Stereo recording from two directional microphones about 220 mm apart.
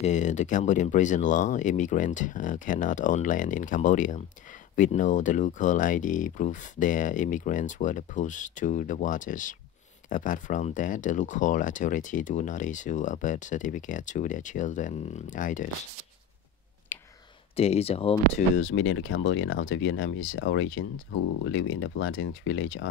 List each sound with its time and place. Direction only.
0.0 s speech: 35° left (ahead or behind)
16.9 s whispering: 10° left (ahead or behind)
17.6 s speech: 25° left (ahead or behind)
18.6 s speech: 60° left (ahead or behind)